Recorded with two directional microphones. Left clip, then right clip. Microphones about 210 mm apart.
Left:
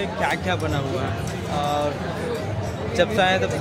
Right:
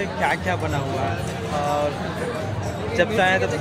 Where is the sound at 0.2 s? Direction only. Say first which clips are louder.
Right 1 dB; 5° left (ahead or behind).